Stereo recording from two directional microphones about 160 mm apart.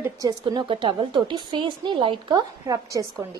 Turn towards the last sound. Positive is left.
turn(degrees=-20)  # may be behind; listen again after turning